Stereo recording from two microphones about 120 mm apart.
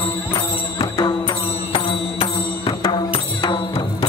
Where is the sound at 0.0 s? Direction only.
50° left (ahead or behind).